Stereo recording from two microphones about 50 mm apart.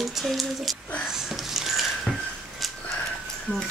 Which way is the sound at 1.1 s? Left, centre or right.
Centre.